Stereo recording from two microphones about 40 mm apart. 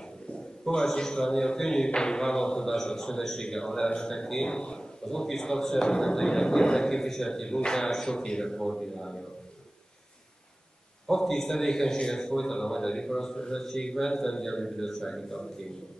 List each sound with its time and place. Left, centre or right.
0.7 s a man's voice: centre
11.1 s a man's voice: centre